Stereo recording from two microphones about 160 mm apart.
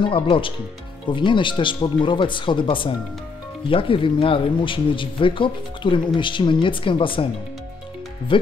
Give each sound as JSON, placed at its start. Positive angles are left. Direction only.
{"t": 0.0, "sound": "speech", "side_deg": 35}
{"t": 8.3, "sound": "speech", "side_deg": 30}